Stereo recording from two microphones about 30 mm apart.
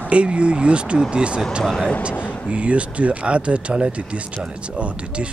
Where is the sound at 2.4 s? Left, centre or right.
Right.